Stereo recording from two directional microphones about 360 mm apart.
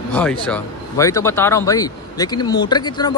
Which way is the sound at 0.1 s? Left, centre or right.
Centre.